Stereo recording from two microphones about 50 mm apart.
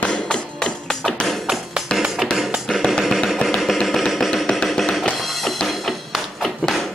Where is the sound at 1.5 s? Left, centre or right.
Centre.